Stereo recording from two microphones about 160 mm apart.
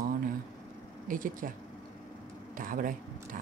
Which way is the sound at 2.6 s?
60° right (ahead or behind).